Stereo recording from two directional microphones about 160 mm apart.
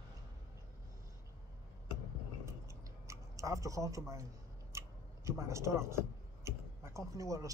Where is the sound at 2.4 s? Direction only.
20° right (ahead or behind).